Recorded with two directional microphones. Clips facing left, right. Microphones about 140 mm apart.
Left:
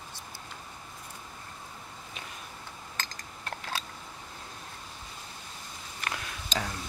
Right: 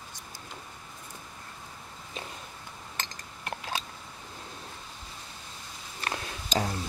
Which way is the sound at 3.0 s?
15° right (ahead or behind).